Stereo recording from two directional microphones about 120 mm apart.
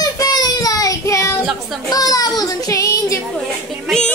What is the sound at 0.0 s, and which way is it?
Child singing, 35° left (ahead or behind).